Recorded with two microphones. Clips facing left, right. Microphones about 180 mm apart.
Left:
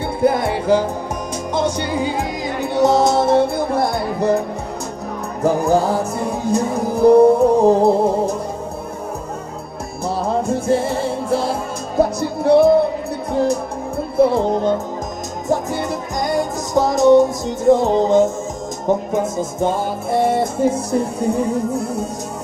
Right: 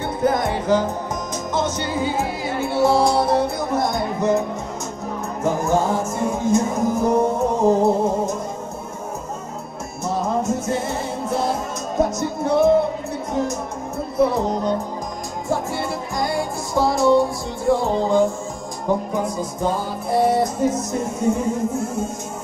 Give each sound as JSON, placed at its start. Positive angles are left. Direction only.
{"t": 0.2, "sound": "music", "side_deg": 10}
{"t": 5.4, "sound": "music", "side_deg": 35}
{"t": 10.0, "sound": "music", "side_deg": 30}